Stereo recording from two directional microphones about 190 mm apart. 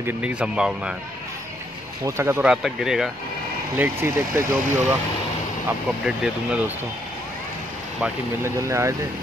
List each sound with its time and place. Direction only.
0.0 s speech: 5° right (ahead or behind)
2.0 s speech: 15° right (ahead or behind)
8.5 s speech: 15° right (ahead or behind)